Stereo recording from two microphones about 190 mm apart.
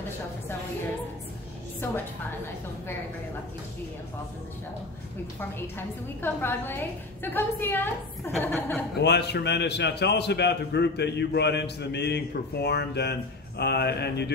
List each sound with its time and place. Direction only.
5.4 s a woman's voice: 10° left (ahead or behind)
9.0 s a man's voice: 60° left (ahead or behind)